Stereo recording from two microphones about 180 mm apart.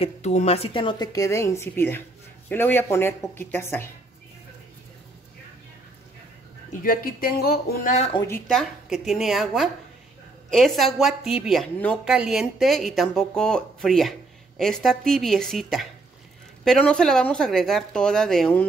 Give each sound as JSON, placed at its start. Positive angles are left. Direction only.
{"t": 0.0, "sound": "speech", "side_deg": 40}
{"t": 6.7, "sound": "speech", "side_deg": 50}
{"t": 7.9, "sound": "speech", "side_deg": 35}
{"t": 8.5, "sound": "speech", "side_deg": 0}